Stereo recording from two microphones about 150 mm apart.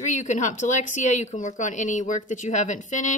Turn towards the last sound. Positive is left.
turn(degrees=55)  # may be behind; listen again after turning